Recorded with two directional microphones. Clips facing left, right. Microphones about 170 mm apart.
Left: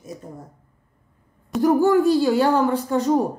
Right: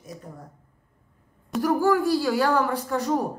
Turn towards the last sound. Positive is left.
turn(degrees=25)  # may be behind; listen again after turning